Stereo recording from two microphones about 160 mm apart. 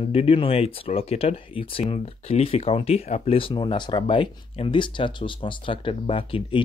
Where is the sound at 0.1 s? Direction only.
35° left (ahead or behind).